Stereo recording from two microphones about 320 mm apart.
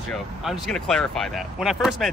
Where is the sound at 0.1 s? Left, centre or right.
Centre.